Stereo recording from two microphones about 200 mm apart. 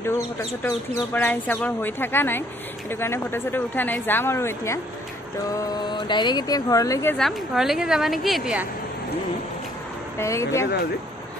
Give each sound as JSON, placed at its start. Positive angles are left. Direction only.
{"t": 0.0, "sound": "speech", "side_deg": 15}
{"t": 7.2, "sound": "a woman's voice", "side_deg": 0}
{"t": 10.1, "sound": "speech", "side_deg": 15}